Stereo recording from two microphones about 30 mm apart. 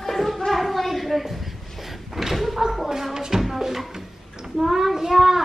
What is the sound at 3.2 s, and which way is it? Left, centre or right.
Music, centre.